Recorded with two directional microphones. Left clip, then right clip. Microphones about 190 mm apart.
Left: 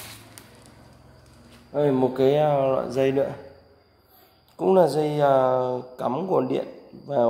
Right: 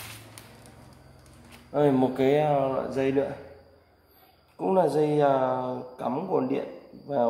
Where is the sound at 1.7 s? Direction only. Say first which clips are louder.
Left 1 dB; 10° left (ahead or behind).